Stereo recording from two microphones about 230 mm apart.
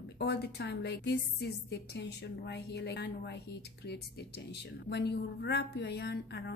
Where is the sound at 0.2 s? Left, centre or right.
Left.